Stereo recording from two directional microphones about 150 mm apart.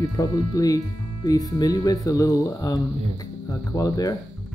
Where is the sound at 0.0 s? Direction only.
25° left (ahead or behind).